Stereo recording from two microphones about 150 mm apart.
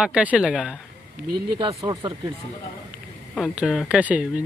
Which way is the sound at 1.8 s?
35° right (ahead or behind).